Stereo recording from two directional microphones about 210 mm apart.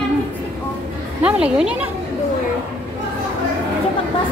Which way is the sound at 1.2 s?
5° right (ahead or behind).